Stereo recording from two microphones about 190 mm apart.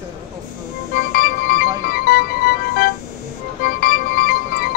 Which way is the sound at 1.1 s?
50° left (ahead or behind).